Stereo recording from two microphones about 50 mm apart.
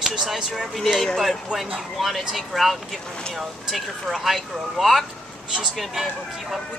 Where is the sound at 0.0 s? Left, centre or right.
Centre.